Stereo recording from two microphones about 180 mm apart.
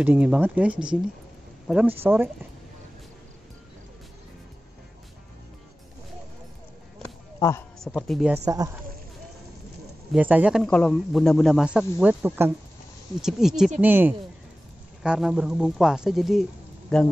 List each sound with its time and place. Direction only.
0.0 s speech: 10° right (ahead or behind)
7.3 s speech: 15° left (ahead or behind)
7.8 s speech: centre (ahead or behind)
8.5 s speech: 20° right (ahead or behind)
10.1 s speech: 5° right (ahead or behind)